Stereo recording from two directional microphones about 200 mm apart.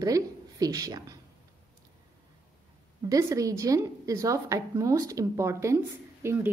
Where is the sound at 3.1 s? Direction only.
15° right (ahead or behind).